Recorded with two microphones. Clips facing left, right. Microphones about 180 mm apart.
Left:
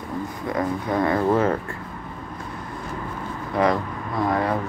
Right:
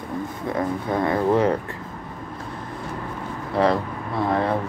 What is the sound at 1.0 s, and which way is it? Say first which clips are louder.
Speech: right 1 dB; 20° right (ahead or behind).